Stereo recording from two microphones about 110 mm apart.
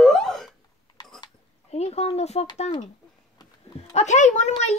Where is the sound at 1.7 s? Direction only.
75° left (ahead or behind).